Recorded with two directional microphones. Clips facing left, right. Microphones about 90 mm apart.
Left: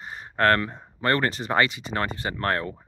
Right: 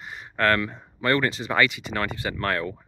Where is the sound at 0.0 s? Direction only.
40° left (ahead or behind).